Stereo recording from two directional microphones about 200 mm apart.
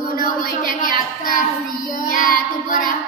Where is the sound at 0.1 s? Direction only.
45° left (ahead or behind).